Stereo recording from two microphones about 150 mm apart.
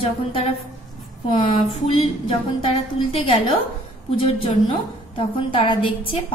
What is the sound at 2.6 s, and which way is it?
A woman's voice, 35° left (ahead or behind).